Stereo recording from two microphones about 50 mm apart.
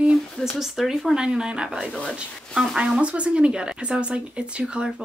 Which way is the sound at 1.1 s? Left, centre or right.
Centre.